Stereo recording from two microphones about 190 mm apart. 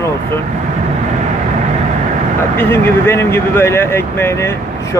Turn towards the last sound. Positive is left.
turn(degrees=10)  # may be behind; listen again after turning